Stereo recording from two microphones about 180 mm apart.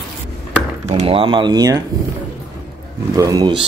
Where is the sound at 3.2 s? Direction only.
20° right (ahead or behind).